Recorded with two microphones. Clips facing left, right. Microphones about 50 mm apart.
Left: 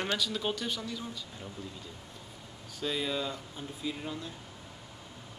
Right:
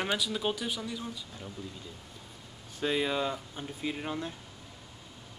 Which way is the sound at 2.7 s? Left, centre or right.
Right.